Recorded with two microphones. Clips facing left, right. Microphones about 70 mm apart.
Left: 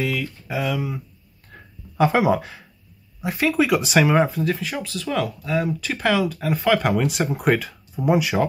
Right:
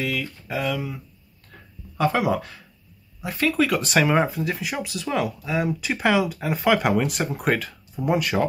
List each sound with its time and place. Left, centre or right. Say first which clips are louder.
0.0 s speech: left 2 dB; centre
1.5 s a sound: left 3 dB; left
2.0 s speech: left 4 dB; centre